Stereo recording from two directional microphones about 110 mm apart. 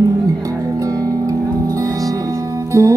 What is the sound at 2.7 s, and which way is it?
Music, 30° right (ahead or behind).